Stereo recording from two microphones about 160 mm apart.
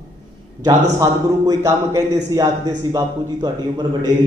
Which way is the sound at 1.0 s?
20° right (ahead or behind).